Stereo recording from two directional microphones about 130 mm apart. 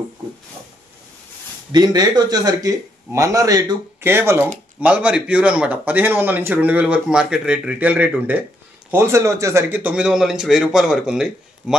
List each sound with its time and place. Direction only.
1.7 s a man's voice: 30° right (ahead or behind)
4.0 s a man's voice: 20° right (ahead or behind)